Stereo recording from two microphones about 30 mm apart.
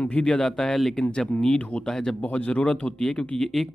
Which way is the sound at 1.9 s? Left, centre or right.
Left.